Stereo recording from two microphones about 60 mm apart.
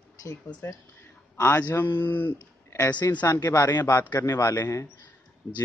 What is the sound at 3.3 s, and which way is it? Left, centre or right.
Speech, left.